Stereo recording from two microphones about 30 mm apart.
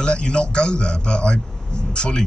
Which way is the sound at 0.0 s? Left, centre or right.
Left.